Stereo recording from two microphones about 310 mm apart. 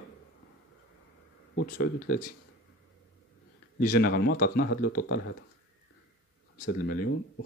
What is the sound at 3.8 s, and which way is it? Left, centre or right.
Speech, left.